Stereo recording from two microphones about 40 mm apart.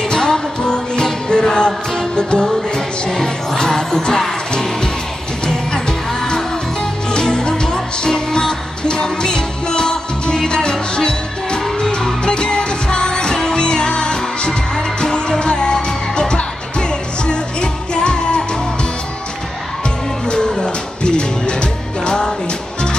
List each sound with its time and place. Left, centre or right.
0.1 s music: centre
5.7 s music: centre
20.2 s music: centre